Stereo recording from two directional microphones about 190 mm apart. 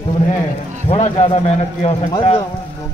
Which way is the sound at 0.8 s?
30° left (ahead or behind).